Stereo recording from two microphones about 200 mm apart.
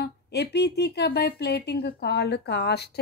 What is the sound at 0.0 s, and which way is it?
Speech, 55° left (ahead or behind).